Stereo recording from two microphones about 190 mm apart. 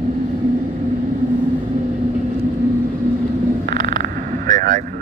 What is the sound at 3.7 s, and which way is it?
Frog, 50° right (ahead or behind).